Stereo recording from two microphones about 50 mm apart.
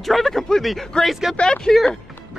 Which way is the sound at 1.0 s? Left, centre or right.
Centre.